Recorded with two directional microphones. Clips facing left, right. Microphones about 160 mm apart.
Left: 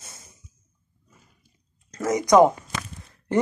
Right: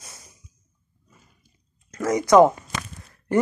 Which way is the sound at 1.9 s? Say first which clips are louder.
Right 1 dB; 20° left (ahead or behind).